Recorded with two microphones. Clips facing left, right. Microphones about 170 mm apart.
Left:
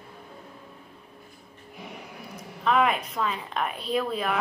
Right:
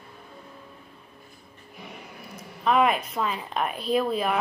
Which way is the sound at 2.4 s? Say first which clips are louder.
Right 1 dB; 10° right (ahead or behind).